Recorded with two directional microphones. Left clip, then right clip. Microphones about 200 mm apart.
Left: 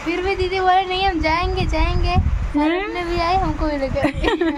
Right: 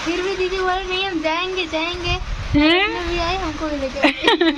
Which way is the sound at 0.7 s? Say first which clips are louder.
Left 5 dB; 25° left (ahead or behind).